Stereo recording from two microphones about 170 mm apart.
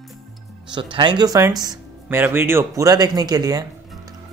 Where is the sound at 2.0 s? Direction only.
10° right (ahead or behind).